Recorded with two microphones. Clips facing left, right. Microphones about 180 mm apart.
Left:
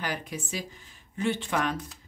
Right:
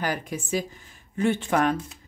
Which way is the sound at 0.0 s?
45° right (ahead or behind).